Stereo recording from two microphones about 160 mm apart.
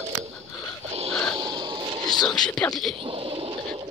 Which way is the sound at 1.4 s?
30° right (ahead or behind).